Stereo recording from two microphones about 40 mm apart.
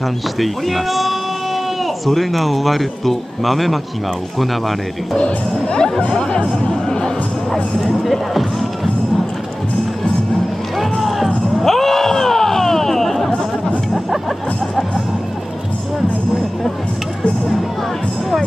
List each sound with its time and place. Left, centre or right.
0.4 s a man's voice: centre
5.1 s speech: centre
7.8 s a man's voice: centre
10.8 s music: centre